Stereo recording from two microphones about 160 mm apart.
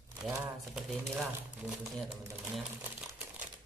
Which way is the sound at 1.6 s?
5° right (ahead or behind).